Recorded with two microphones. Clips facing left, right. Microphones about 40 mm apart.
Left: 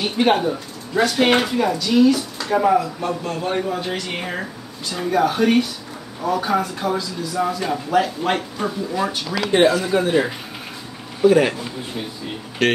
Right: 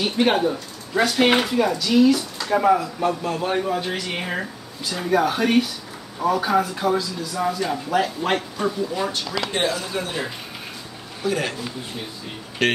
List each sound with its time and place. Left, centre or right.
0.0 s speech: centre
9.8 s speech: centre
11.2 s speech: left
12.6 s speech: centre